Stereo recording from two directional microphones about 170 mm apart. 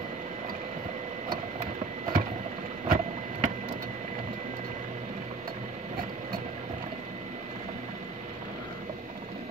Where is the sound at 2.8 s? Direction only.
45° right (ahead or behind).